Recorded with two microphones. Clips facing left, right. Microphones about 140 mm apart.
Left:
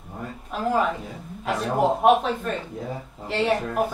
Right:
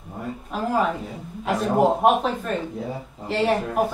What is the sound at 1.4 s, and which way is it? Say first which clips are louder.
Speech: right 3 dB; centre (ahead or behind).